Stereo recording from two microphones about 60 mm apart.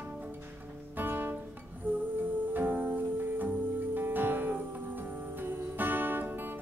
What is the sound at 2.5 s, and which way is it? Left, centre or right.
Music, right.